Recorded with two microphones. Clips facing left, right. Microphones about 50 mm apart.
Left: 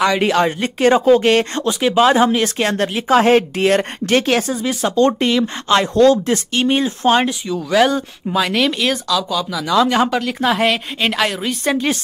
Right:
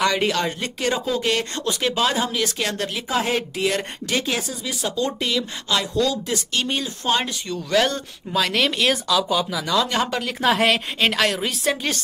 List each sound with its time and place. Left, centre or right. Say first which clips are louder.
0.0 s speech: left 6 dB; centre; by 1.7 s left
1.7 s speech: left 4 dB; centre
2.0 s speech: left 12 dB; left
6.5 s speech: left 9 dB; left
7.4 s a woman's voice: left 6 dB; centre
8.9 s speech: left 1 dB; centre
9.8 s speech: left 8 dB; centre
10.2 s a woman's voice: left 3 dB; centre